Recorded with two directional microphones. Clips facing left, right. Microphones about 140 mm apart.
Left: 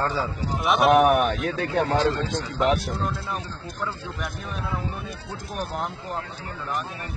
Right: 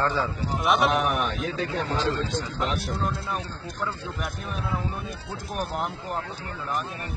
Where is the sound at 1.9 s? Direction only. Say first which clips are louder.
Left 3 dB; 90° left.